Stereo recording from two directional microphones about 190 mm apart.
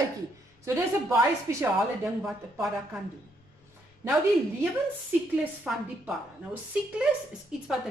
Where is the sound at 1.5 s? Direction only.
15° right (ahead or behind).